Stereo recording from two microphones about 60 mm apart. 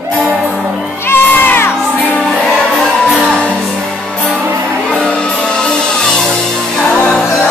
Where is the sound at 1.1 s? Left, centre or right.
Left.